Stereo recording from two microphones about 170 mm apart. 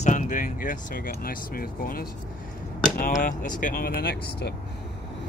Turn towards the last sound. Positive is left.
turn(degrees=65)  # may be behind; listen again after turning